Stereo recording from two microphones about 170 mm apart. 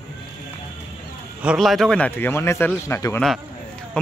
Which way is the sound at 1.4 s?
5° right (ahead or behind).